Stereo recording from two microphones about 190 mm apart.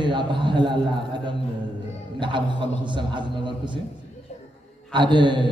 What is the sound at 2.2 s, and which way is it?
A man's voice, 25° right (ahead or behind).